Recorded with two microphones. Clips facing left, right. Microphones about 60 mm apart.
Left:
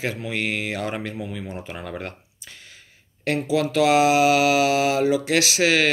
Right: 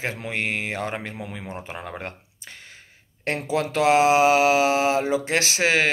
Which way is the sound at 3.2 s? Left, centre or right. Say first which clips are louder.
Left 3 dB; right.